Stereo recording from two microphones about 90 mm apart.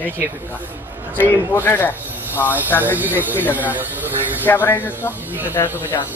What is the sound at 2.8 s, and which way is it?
Speech, 20° right (ahead or behind).